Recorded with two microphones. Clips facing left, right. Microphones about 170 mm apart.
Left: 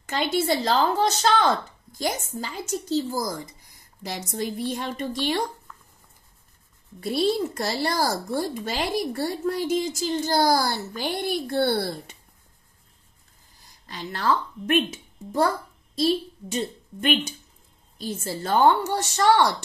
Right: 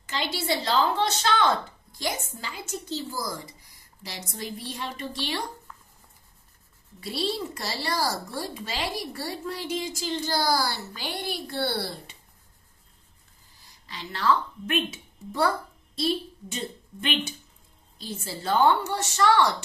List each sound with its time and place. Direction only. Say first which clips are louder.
0.0 s speech: left 7 dB; 50° left (ahead or behind)
7.0 s speech: left 7 dB; 50° left (ahead or behind)
13.6 s a woman's voice: left 4 dB; 50° left (ahead or behind)